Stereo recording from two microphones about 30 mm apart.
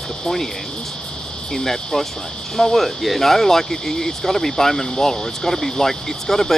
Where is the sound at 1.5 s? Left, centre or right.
Centre.